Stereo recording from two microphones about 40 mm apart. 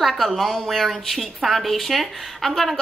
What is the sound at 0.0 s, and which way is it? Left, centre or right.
A woman's voice, centre.